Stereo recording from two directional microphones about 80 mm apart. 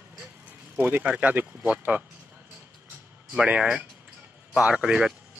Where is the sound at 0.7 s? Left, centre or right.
Right.